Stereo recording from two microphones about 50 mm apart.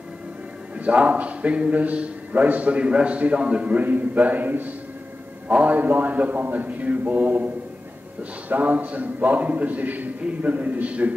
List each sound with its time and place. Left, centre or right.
0.7 s a man's voice: right